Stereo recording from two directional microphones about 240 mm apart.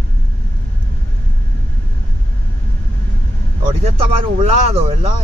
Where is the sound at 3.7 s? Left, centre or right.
Right.